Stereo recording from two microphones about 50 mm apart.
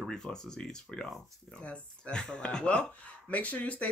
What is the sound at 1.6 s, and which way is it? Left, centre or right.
Speech, left.